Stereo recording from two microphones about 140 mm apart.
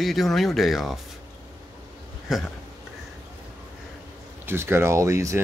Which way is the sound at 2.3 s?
5° right (ahead or behind).